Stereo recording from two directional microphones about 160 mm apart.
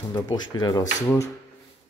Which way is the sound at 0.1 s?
25° left (ahead or behind).